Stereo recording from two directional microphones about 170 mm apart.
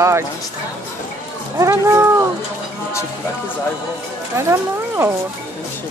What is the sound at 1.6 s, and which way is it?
Speech, 15° right (ahead or behind).